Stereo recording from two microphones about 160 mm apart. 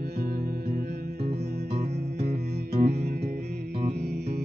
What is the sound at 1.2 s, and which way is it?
Music, 90° right.